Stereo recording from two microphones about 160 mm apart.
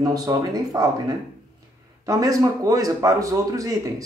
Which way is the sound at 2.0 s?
20° right (ahead or behind).